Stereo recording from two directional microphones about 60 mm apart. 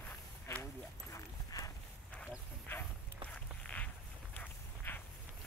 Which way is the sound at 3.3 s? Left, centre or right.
Left.